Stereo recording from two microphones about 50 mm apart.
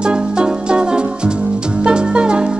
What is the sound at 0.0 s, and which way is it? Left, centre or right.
Music, centre.